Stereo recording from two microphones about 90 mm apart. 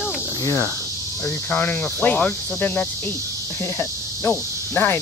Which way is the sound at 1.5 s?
20° left (ahead or behind).